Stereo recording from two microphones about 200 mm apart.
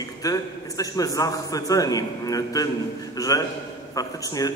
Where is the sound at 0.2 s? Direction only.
15° left (ahead or behind).